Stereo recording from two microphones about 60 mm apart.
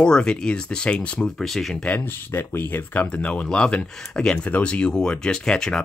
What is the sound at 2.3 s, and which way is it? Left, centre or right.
Speech, left.